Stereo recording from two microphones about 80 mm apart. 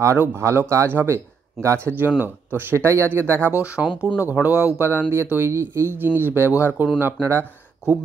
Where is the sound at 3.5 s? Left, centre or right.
Centre.